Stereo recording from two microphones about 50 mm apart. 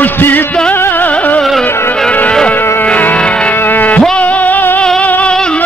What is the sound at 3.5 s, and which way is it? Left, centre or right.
Music, left.